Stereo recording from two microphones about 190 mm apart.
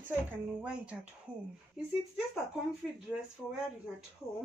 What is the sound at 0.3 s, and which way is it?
Speech, 5° right (ahead or behind).